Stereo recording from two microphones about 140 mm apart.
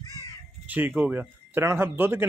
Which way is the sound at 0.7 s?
10° right (ahead or behind).